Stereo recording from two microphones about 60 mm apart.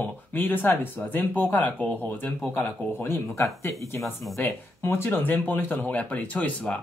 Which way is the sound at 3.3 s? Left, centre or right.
Left.